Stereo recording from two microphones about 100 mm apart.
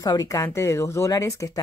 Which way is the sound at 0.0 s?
40° left (ahead or behind).